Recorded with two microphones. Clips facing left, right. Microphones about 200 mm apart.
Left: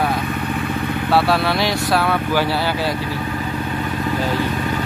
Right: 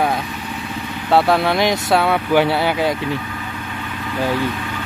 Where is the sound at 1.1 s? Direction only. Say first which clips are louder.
Right 3 dB; 20° right (ahead or behind).